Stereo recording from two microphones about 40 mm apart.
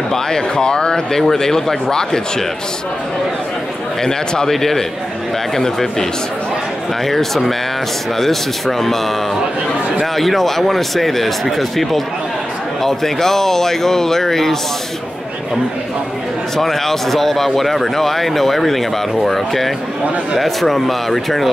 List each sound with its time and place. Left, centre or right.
0.1 s speech: centre
4.0 s speech: centre
7.1 s speech: centre
16.5 s speech: centre